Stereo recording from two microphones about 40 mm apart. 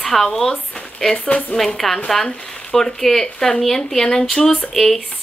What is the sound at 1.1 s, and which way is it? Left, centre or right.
Speech, left.